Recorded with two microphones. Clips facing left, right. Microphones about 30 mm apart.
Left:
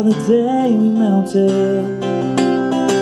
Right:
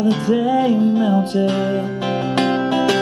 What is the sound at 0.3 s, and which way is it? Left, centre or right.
Music, right.